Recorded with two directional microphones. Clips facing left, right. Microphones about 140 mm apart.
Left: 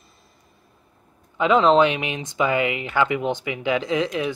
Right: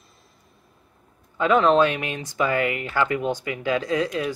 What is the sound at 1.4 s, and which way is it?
Speech, 20° left (ahead or behind).